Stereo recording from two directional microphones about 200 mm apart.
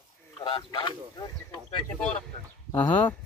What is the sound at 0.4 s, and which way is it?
Speech, 20° left (ahead or behind).